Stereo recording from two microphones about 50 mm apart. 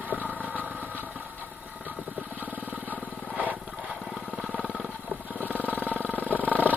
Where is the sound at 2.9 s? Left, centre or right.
Right.